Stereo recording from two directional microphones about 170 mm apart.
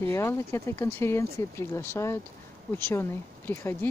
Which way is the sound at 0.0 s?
15° left (ahead or behind).